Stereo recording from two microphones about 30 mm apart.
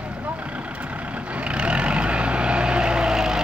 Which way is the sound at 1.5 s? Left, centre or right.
Right.